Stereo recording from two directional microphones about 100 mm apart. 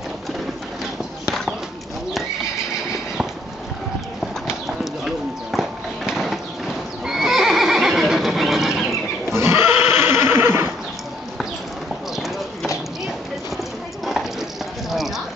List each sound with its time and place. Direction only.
5.0 s bird: 5° right (ahead or behind)
7.1 s neigh: 5° right (ahead or behind)
9.3 s neigh: 25° right (ahead or behind)
14.9 s a sound: centre (ahead or behind)